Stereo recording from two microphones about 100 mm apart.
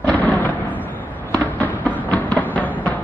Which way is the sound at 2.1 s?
15° left (ahead or behind).